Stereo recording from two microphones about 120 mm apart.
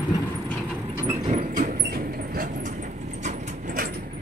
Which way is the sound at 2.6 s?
90° right.